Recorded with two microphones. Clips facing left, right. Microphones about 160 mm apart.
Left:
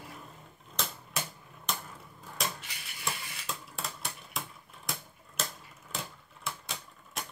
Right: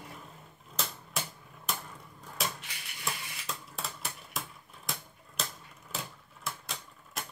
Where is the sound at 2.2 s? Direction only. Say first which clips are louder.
Even; centre (ahead or behind).